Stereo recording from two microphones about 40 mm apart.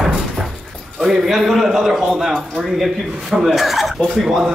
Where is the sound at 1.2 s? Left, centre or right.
Centre.